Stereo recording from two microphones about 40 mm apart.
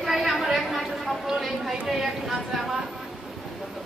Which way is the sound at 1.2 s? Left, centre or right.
Centre.